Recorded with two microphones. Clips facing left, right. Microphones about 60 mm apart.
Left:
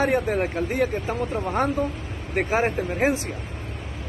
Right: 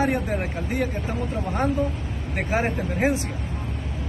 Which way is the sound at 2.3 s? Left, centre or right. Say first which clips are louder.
Left 3 dB; left.